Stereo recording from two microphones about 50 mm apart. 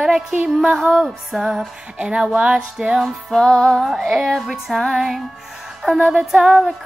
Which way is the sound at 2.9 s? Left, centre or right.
Centre.